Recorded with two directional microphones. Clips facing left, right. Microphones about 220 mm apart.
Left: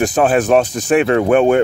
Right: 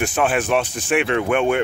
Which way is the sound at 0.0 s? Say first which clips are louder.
Left 6 dB; 40° left (ahead or behind).